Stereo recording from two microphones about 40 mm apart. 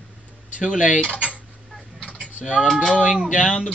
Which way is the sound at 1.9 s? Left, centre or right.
Left.